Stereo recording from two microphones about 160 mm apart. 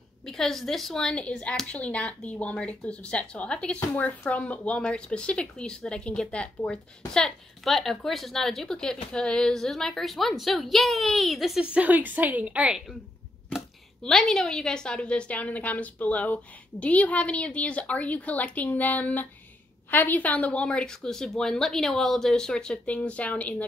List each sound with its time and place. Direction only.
0.2 s a woman's voice: centre (ahead or behind)
14.0 s a woman's voice: 5° left (ahead or behind)